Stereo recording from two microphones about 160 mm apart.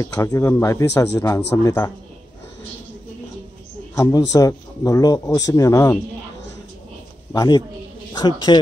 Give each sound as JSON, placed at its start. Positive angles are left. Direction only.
{"t": 0.0, "sound": "a man's voice", "side_deg": 20}
{"t": 3.9, "sound": "a man's voice", "side_deg": 20}
{"t": 7.3, "sound": "a man's voice", "side_deg": 25}